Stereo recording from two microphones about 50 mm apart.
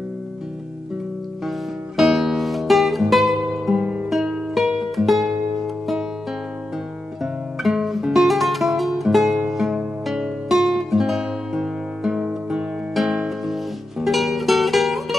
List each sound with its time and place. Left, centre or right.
2.0 s music: centre
3.7 s music: centre
4.1 s music: centre
7.7 s guitar: centre
8.1 s music: centre
12.9 s music: centre